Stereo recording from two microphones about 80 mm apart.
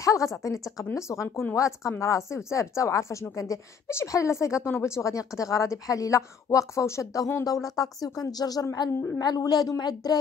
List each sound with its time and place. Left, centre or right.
0.0 s a woman's voice: left